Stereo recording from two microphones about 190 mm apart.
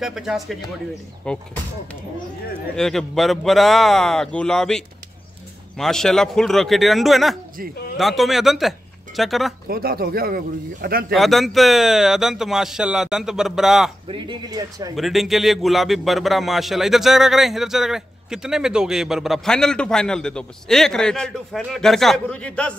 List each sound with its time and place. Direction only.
0.0 s speech: centre (ahead or behind)
2.7 s speech: 5° left (ahead or behind)
9.7 s speech: 50° right (ahead or behind)
11.1 s speech: centre (ahead or behind)
14.0 s speech: 25° right (ahead or behind)
15.0 s speech: centre (ahead or behind)